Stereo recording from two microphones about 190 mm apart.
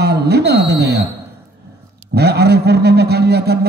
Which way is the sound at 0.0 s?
60° right (ahead or behind).